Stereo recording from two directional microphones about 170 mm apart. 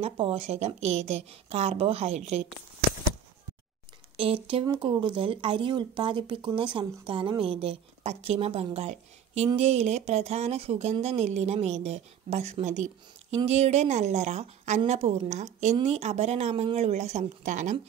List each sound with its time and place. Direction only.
0.0 s speech: 35° right (ahead or behind)
4.2 s speech: 30° right (ahead or behind)